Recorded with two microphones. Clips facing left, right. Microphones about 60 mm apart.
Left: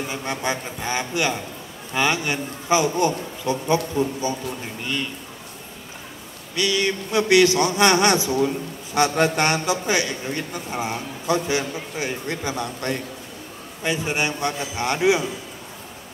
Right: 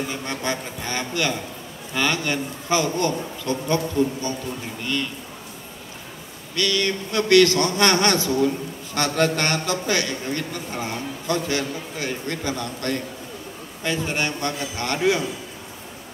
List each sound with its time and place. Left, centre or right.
0.1 s a man's voice: centre
6.5 s a man's voice: centre